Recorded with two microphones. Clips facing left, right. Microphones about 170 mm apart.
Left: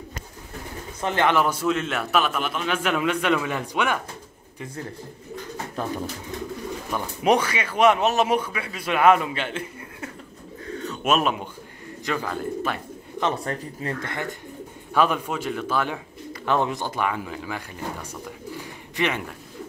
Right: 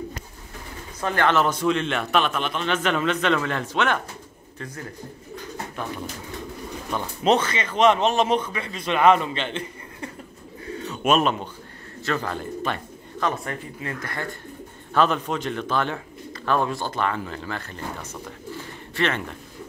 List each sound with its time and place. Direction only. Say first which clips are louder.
1.0 s speech: even; 20° left (ahead or behind)
6.9 s speech: even; 10° left (ahead or behind)
13.2 s speech: left 1 dB; 35° left (ahead or behind)
14.0 s speech: left 1 dB; 20° left (ahead or behind)
16.4 s speech: even; 20° left (ahead or behind)
18.6 s pigeon: right 1 dB; 15° left (ahead or behind)